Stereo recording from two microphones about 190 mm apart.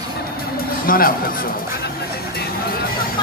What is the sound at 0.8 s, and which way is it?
Speech, 50° left (ahead or behind).